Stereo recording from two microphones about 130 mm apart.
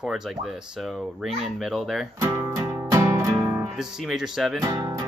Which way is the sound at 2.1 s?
20° right (ahead or behind).